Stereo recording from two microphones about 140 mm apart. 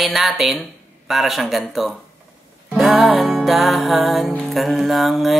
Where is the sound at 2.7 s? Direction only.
Centre (ahead or behind).